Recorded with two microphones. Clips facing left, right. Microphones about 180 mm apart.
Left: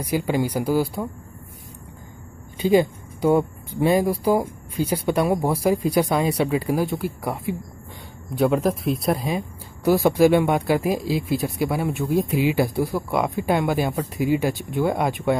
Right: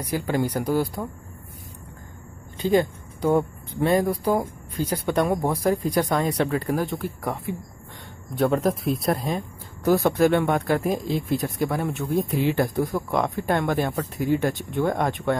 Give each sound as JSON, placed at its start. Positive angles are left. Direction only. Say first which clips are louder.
{"t": 0.0, "sound": "speech", "louder": "left 2 dB", "side_deg": 15}
{"t": 2.5, "sound": "speech", "louder": "left 3 dB", "side_deg": 10}